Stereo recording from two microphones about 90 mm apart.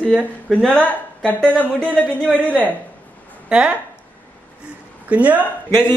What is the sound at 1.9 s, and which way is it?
Music, 15° left (ahead or behind).